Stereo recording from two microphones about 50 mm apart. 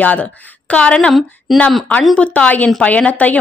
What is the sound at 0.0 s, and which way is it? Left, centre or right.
A woman's voice, left.